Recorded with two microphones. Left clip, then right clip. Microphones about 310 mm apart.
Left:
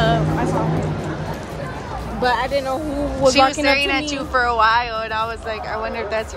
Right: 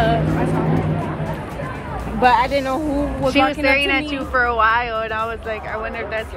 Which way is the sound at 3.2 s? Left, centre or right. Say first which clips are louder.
Left 2 dB; centre.